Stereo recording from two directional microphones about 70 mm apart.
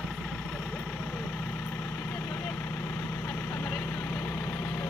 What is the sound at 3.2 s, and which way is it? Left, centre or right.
Vehicle, left.